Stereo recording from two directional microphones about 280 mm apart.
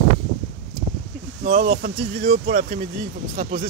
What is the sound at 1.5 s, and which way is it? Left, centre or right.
Speech, right.